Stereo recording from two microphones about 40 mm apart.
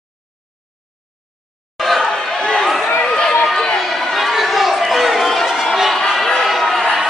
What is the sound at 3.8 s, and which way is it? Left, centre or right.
Chatter, centre.